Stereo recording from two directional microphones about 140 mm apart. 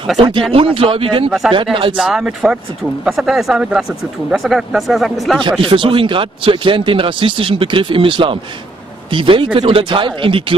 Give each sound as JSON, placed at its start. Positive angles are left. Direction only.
{"t": 0.2, "sound": "speech", "side_deg": -40}
{"t": 2.0, "sound": "speech", "side_deg": -5}
{"t": 5.6, "sound": "speech", "side_deg": -40}